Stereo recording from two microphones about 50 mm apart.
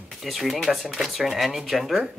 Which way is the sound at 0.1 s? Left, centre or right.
Centre.